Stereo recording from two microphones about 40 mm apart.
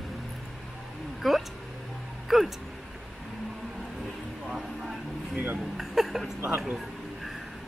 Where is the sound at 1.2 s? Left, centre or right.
Centre.